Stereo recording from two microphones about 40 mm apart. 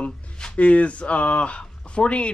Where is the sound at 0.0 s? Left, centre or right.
Left.